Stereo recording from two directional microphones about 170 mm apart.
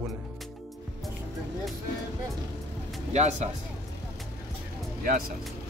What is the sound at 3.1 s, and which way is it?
Speech, 40° right (ahead or behind).